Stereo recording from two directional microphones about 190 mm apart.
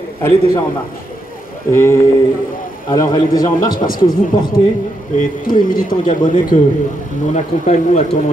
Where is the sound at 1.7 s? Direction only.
15° left (ahead or behind).